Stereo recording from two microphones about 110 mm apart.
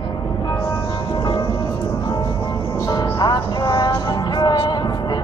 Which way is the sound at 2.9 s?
35° left (ahead or behind).